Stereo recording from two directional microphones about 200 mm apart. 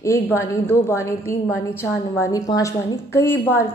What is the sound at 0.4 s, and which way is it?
Speech, 10° left (ahead or behind).